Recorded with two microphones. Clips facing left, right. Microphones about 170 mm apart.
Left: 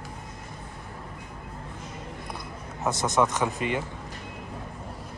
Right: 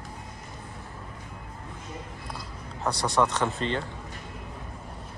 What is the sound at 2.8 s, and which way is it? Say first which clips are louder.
Speech: left 1 dB; 20° left (ahead or behind).